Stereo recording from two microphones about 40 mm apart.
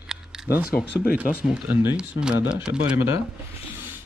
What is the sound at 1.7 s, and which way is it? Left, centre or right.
Speech, right.